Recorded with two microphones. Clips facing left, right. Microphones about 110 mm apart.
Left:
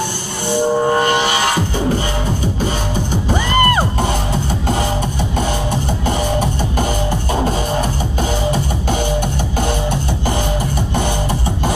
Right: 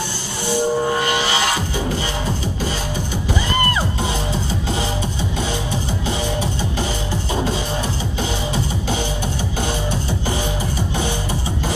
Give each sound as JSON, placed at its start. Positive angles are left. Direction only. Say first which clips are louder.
{"t": 0.5, "sound": "music", "louder": "left 4 dB", "side_deg": 50}
{"t": 3.3, "sound": "music", "louder": "left 6 dB", "side_deg": 55}
{"t": 6.0, "sound": "music", "louder": "left 6 dB", "side_deg": 50}